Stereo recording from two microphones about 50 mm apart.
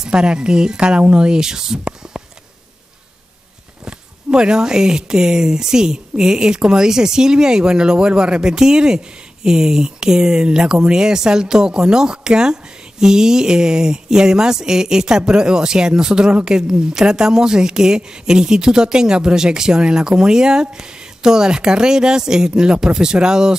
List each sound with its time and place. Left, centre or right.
0.0 s speech: centre
3.8 s speech: centre